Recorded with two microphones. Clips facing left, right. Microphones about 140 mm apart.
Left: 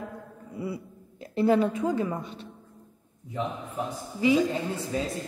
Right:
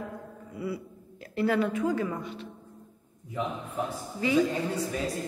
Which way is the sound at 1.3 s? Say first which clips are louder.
Left 3 dB; 25° left (ahead or behind).